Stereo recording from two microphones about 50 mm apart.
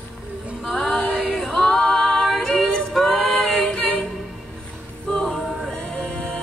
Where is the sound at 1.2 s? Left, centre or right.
Centre.